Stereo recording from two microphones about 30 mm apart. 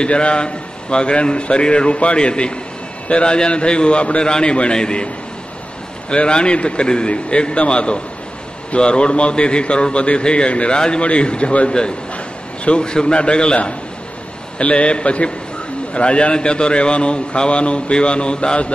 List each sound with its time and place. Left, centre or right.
0.0 s a man's voice: left
4.2 s a man's voice: left
12.6 s a man's voice: left
14.6 s a man's voice: left